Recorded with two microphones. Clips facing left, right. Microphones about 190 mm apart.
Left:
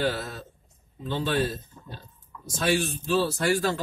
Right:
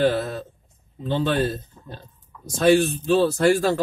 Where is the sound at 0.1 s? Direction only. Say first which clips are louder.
Right 8 dB; 55° right (ahead or behind).